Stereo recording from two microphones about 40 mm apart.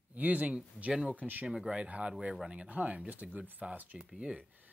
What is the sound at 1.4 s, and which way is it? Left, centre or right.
Speech, centre.